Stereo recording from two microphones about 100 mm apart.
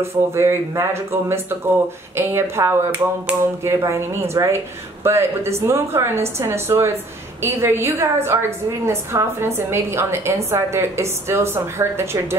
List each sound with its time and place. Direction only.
0.0 s a woman's voice: 25° right (ahead or behind)